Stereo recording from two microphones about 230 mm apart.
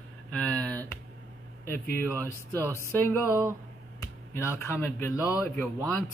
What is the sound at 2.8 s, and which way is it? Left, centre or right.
Speech, centre.